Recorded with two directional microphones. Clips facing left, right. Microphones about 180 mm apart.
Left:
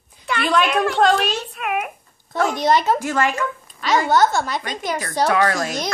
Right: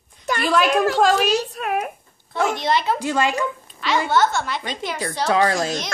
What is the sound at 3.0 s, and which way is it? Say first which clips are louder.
Speech: even; 15° right (ahead or behind).